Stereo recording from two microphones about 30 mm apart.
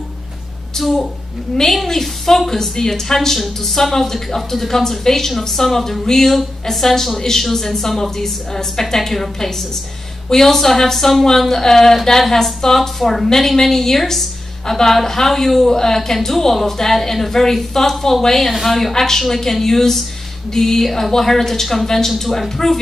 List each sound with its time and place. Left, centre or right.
0.8 s speech: centre